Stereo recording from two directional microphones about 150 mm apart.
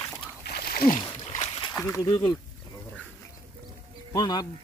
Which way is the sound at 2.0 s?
25° left (ahead or behind).